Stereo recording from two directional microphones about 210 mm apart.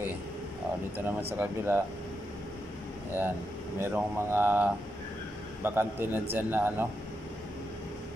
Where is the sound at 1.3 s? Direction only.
10° right (ahead or behind).